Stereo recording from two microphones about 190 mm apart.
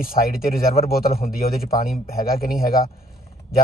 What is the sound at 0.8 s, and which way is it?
A man's voice, 50° left (ahead or behind).